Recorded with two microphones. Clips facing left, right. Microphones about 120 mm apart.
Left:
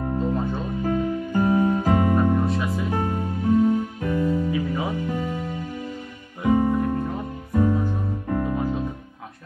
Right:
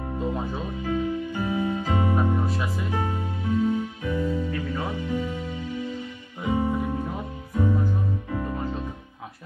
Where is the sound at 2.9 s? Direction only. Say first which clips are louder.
Left 3 dB; 50° left (ahead or behind).